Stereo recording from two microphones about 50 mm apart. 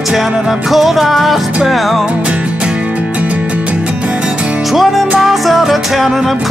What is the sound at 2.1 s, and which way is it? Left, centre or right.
Music, right.